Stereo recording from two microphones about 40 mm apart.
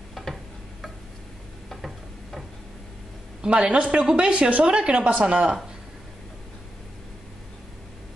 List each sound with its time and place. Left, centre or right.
0.1 s tick-tock: centre
3.4 s a woman's voice: right
4.0 s a woman's voice: right